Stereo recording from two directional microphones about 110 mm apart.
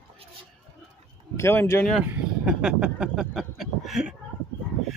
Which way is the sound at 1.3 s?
25° left (ahead or behind).